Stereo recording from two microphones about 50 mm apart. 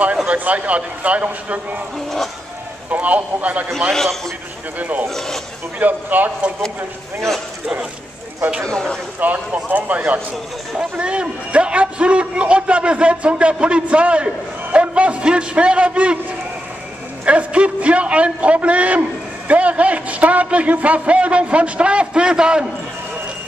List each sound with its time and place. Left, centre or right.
0.3 s a man's voice: right
2.9 s speech: right
3.9 s a man's voice: centre
4.7 s speech: right
5.0 s speech: centre
5.8 s speech: right
7.2 s a man's voice: centre
8.6 s speech: centre
9.2 s speech: right
10.8 s a man's voice: right
17.2 s a man's voice: right